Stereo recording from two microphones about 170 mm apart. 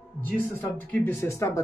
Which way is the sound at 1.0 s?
15° left (ahead or behind).